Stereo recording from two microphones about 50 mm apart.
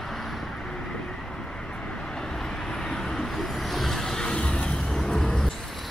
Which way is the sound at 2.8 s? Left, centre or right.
Centre.